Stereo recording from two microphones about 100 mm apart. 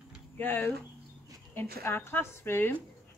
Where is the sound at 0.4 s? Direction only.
20° left (ahead or behind).